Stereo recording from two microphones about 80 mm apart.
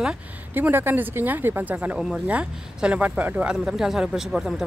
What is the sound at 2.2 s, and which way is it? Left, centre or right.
Speech, centre.